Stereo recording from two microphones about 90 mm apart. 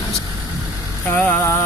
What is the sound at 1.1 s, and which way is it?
Vehicle, 25° left (ahead or behind).